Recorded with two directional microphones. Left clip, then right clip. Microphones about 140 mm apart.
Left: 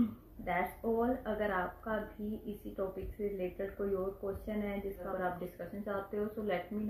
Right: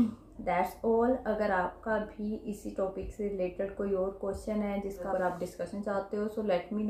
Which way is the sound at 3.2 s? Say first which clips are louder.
Right 3 dB; 20° right (ahead or behind).